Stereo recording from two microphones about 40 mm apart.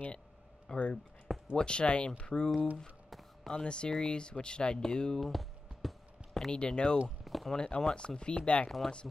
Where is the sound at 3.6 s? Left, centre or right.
Left.